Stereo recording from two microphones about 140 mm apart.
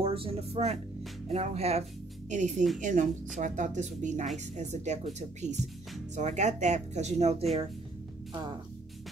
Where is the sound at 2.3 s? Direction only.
60° right (ahead or behind).